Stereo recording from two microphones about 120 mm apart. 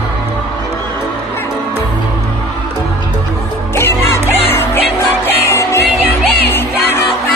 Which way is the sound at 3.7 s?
20° left (ahead or behind).